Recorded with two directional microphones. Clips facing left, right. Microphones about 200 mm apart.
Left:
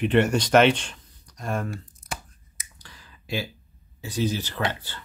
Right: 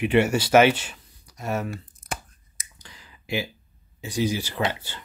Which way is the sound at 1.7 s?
50° right (ahead or behind).